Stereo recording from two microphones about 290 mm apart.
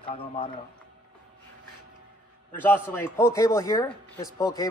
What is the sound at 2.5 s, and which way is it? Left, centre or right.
A man's voice, centre.